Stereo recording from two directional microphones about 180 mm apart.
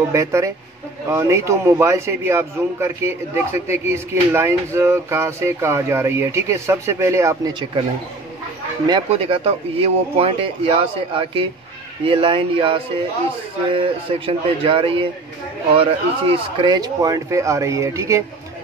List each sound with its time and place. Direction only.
0.1 s a man's voice: 15° right (ahead or behind)
8.8 s a man's voice: 25° right (ahead or behind)